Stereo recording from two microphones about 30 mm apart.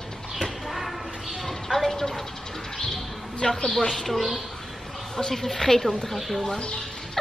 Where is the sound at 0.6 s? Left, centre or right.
Centre.